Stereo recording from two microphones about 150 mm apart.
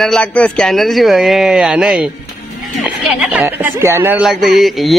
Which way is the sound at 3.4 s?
15° right (ahead or behind).